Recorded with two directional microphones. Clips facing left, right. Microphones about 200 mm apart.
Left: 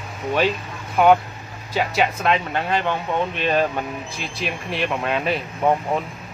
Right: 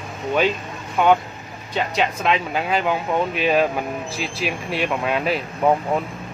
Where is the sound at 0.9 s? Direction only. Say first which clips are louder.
Left 2 dB; centre (ahead or behind).